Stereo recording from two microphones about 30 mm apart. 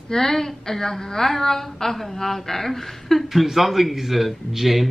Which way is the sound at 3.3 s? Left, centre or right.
Centre.